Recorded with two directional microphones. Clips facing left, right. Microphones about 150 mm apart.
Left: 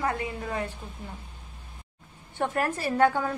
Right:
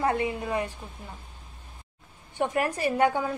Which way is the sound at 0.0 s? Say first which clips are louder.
Right 4 dB; 25° right (ahead or behind).